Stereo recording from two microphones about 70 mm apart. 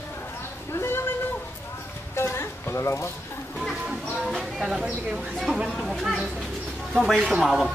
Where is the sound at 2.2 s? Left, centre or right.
Left.